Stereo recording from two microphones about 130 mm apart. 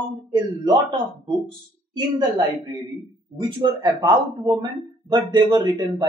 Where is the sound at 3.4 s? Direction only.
35° right (ahead or behind).